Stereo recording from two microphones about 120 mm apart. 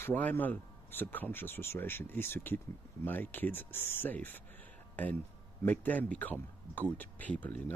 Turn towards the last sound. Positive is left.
turn(degrees=15)  # may be behind; listen again after turning